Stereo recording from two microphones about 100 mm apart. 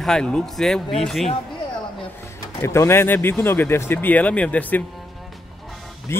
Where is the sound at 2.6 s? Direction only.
30° left (ahead or behind).